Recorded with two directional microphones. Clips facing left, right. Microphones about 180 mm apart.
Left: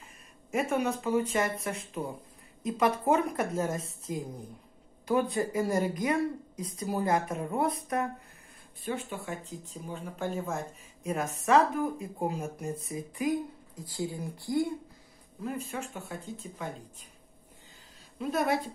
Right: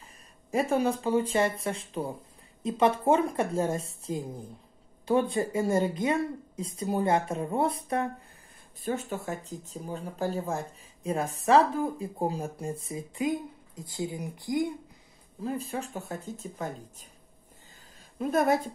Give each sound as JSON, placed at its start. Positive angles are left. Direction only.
{"t": 0.5, "sound": "speech", "side_deg": -35}
{"t": 8.8, "sound": "speech", "side_deg": -40}
{"t": 15.4, "sound": "speech", "side_deg": -35}
{"t": 18.3, "sound": "speech", "side_deg": -45}